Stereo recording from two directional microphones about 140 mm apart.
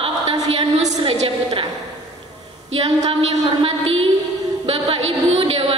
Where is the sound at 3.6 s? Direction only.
40° right (ahead or behind).